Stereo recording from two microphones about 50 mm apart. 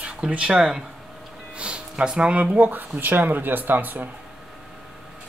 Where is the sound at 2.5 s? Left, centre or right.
Right.